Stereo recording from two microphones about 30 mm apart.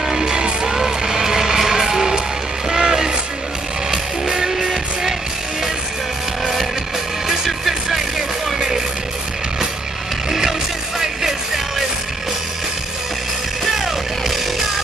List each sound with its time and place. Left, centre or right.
0.0 s music: centre
0.3 s music: right
0.7 s vehicle: centre
2.7 s music: right
6.4 s music: centre
8.5 s music: right
11.0 s music: centre